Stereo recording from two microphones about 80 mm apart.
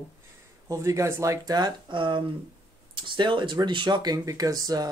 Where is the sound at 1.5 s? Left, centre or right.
Right.